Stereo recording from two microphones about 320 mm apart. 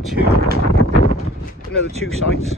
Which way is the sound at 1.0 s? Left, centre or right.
Left.